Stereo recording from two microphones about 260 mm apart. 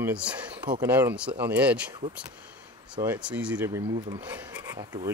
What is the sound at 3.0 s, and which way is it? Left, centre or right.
Speech, centre.